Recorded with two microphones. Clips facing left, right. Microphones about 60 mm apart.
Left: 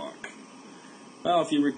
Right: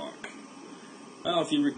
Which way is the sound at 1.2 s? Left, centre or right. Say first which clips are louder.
Left 4 dB; centre.